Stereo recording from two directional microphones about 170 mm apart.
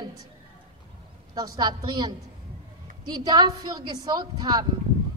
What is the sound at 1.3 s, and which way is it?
Speech, 25° right (ahead or behind).